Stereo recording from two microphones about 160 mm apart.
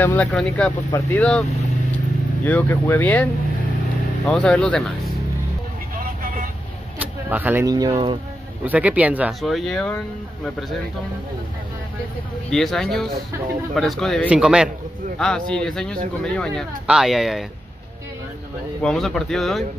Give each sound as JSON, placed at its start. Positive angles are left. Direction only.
{"t": 0.0, "sound": "speech", "side_deg": 10}
{"t": 2.4, "sound": "speech", "side_deg": 10}
{"t": 4.3, "sound": "speech", "side_deg": 5}
{"t": 5.9, "sound": "vehicle", "side_deg": -60}
{"t": 7.0, "sound": "a sound", "side_deg": -10}
{"t": 7.6, "sound": "speech", "side_deg": -25}
{"t": 8.6, "sound": "speech", "side_deg": -10}
{"t": 12.4, "sound": "speech", "side_deg": 5}
{"t": 18.8, "sound": "speech", "side_deg": 5}